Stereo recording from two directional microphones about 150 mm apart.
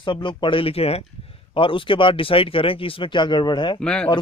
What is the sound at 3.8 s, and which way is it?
Speech, 5° left (ahead or behind).